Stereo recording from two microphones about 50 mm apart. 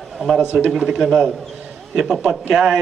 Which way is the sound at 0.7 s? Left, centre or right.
Centre.